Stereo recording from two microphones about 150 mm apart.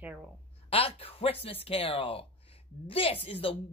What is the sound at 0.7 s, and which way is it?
Speech, 40° left (ahead or behind).